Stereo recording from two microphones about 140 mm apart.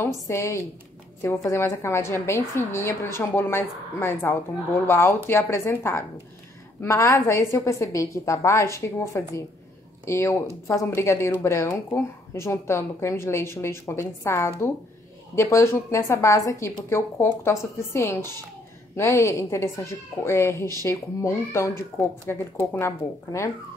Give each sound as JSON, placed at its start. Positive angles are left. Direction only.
{"t": 0.0, "sound": "a woman's voice", "side_deg": 20}